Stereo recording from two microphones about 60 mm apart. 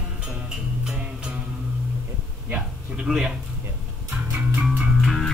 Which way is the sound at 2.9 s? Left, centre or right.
Centre.